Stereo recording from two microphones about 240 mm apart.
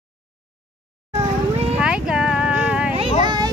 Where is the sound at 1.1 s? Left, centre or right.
Right.